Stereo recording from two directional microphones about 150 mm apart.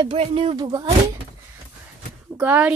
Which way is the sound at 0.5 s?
25° right (ahead or behind).